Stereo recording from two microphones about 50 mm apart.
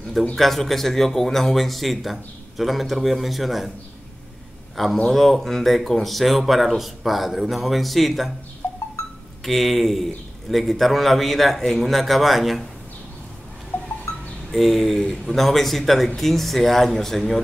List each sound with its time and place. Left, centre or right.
0.4 s a man's voice: centre
4.8 s a man's voice: centre
8.6 s a sound: left
9.4 s a man's voice: centre
13.7 s a sound: left
14.5 s a man's voice: centre